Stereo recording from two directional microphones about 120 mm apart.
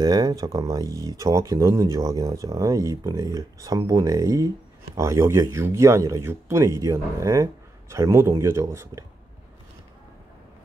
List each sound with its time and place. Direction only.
0.0 s speech: 30° right (ahead or behind)